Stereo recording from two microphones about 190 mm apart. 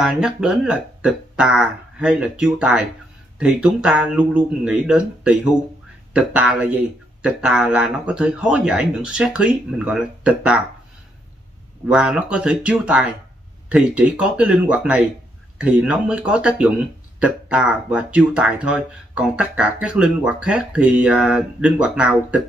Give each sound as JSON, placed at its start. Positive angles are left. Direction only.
{"t": 0.0, "sound": "speech", "side_deg": -5}
{"t": 11.9, "sound": "speech", "side_deg": -5}